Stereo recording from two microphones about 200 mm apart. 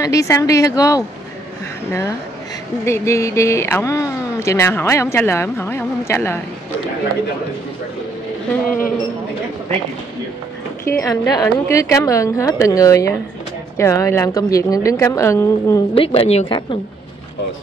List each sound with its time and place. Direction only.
0.0 s speech: 15° left (ahead or behind)
8.6 s a man's voice: 45° left (ahead or behind)
10.9 s speech: 15° left (ahead or behind)
15.9 s speech: 30° left (ahead or behind)